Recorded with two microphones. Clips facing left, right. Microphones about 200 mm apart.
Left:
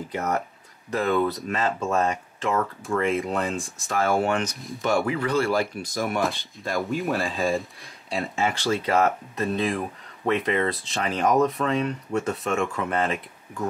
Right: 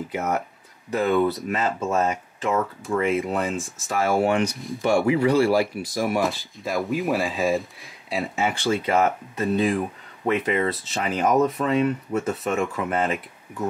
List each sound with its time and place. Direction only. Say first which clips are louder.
0.1 s speech: even; 5° right (ahead or behind)
5.0 s speech: right 5 dB; 10° right (ahead or behind)